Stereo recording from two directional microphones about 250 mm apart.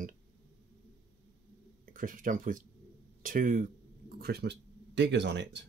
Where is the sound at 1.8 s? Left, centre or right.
Right.